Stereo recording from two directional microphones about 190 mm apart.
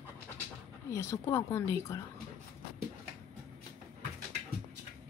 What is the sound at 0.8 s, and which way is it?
A woman's voice, 15° left (ahead or behind).